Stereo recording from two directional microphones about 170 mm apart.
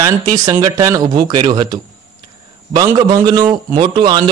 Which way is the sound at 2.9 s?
25° right (ahead or behind).